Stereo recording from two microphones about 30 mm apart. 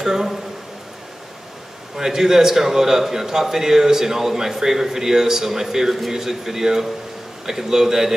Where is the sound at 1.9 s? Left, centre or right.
Centre.